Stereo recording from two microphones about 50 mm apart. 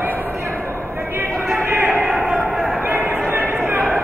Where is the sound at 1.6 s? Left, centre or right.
Right.